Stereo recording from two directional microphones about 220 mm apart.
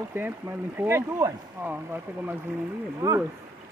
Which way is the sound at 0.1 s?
10° right (ahead or behind).